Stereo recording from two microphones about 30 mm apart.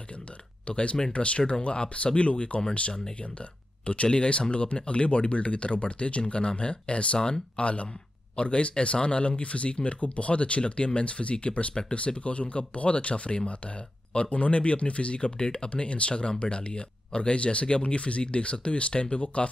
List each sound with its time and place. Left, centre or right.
0.7 s speech: left
3.8 s speech: left